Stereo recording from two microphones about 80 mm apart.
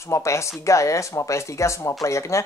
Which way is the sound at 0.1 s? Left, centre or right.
Left.